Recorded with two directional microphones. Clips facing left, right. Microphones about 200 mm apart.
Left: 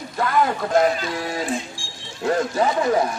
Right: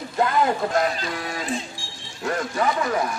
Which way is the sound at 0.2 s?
20° right (ahead or behind).